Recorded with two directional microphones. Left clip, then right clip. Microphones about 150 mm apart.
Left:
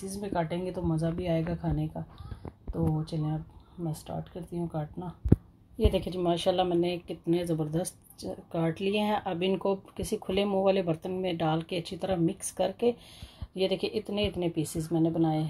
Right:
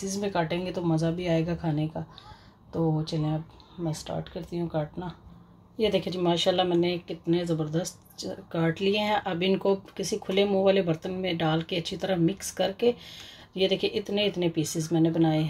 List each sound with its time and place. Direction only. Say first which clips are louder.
0.1 s speech: right 3 dB; 5° left (ahead or behind)
5.8 s speech: right 3 dB; 15° left (ahead or behind)
8.3 s speech: right 3 dB; 15° left (ahead or behind)
14.9 s speech: right 3 dB; 5° left (ahead or behind)